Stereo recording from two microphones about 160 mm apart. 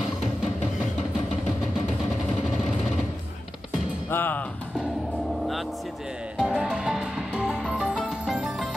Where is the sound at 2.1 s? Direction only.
Centre (ahead or behind).